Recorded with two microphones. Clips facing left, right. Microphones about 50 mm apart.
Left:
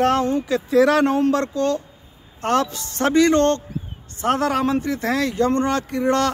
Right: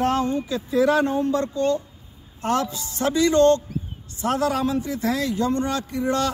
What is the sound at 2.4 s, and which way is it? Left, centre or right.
A man's voice, left.